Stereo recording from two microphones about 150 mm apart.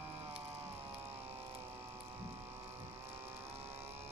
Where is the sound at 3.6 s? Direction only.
15° right (ahead or behind).